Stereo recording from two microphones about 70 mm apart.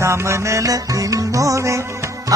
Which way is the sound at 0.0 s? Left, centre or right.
Right.